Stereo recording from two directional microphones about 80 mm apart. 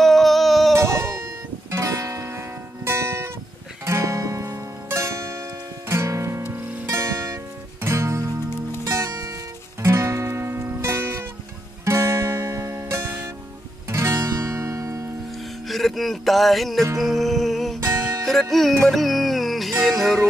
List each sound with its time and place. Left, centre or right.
0.0 s music: centre
0.7 s music: right
6.4 s music: right
6.9 s music: right
15.7 s music: centre